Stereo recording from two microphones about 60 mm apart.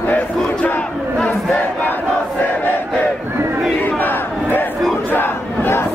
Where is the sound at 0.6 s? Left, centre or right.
Left.